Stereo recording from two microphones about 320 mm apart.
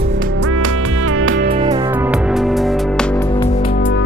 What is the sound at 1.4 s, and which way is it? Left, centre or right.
Music, right.